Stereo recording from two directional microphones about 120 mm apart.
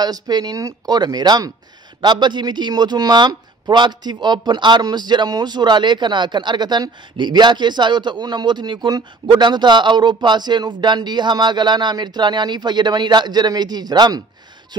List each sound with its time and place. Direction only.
0.0 s speech: 35° right (ahead or behind)